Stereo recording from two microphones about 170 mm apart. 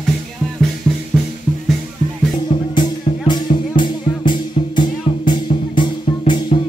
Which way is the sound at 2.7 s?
25° left (ahead or behind).